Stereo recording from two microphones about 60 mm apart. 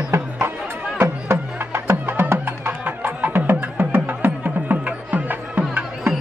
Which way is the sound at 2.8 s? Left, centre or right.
Right.